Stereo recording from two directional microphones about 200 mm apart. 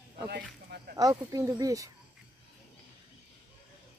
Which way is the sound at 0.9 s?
20° right (ahead or behind).